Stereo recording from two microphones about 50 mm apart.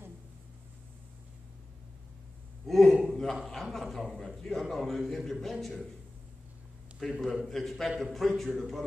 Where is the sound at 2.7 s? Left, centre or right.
Centre.